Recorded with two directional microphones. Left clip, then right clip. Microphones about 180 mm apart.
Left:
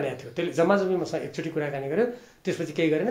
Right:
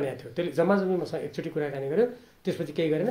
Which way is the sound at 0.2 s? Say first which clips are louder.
Left 3 dB; 40° right (ahead or behind).